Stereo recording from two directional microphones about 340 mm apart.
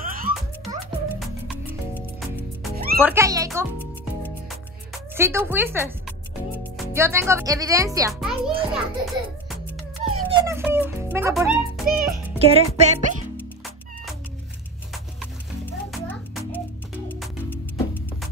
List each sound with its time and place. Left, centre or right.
0.0 s music: right
1.0 s music: centre
2.7 s music: right
3.0 s a child's voice: centre
5.1 s a child's voice: centre
12.1 s a child's voice: centre
15.1 s music: centre